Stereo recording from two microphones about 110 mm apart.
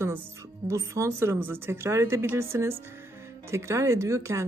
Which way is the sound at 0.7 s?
25° right (ahead or behind).